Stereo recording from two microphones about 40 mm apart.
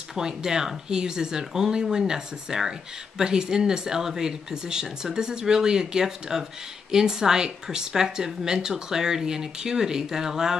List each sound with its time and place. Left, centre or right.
0.1 s a woman's voice: centre